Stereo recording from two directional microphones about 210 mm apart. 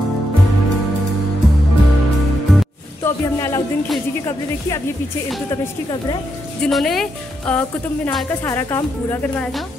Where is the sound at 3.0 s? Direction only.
15° left (ahead or behind).